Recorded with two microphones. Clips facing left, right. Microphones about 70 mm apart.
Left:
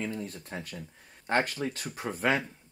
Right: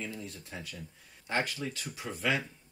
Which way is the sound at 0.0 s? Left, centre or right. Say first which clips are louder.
Left 5 dB; left.